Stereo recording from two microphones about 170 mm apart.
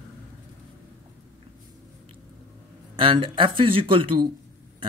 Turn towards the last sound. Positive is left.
turn(degrees=-30)  # may be behind; listen again after turning